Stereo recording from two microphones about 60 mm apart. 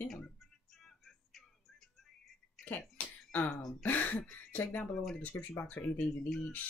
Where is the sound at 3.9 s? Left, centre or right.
Left.